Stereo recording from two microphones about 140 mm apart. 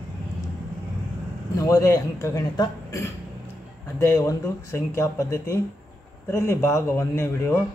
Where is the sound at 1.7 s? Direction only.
25° left (ahead or behind).